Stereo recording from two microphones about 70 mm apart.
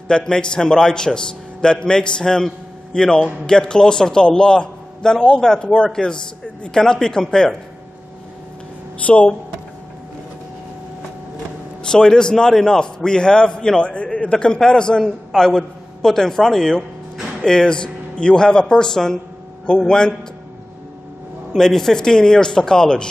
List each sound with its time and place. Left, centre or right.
0.1 s a man's voice: centre
9.0 s a man's voice: centre
11.9 s a man's voice: centre
21.5 s a man's voice: centre